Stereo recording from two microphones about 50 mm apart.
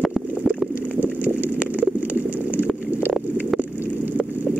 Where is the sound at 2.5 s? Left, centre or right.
Right.